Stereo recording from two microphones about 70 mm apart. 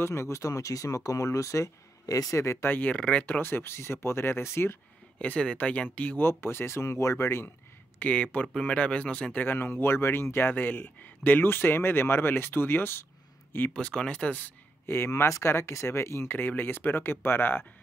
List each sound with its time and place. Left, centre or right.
0.0 s speech: left
2.4 s speech: left
2.7 s speech: left
3.0 s speech: centre
3.3 s speech: left
5.2 s speech: centre
6.2 s speech: left
8.0 s speech: left
13.7 s speech: centre
14.9 s speech: left